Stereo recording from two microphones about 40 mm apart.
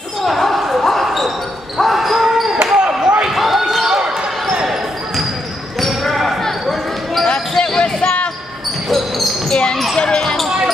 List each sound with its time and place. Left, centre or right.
0.2 s basketball bounce: centre
2.5 s basketball bounce: centre
3.3 s run: centre
3.8 s basketball bounce: centre
5.8 s basketball bounce: centre
7.2 s basketball bounce: left
8.8 s basketball bounce: centre
9.5 s basketball bounce: left
9.9 s a sound: centre